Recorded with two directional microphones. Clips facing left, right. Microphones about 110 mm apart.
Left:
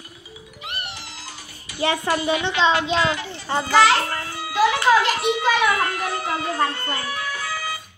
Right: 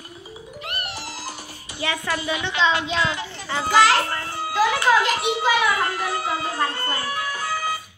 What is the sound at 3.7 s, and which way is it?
A child's voice, centre (ahead or behind).